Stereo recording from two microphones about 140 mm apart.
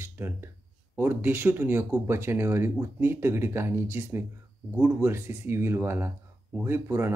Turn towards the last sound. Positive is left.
turn(degrees=-15)  # may be behind; listen again after turning